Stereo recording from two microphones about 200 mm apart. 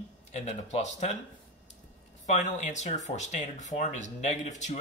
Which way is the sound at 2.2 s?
35° left (ahead or behind).